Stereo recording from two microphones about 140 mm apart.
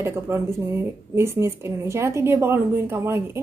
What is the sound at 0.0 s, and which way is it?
A woman's voice, 15° right (ahead or behind).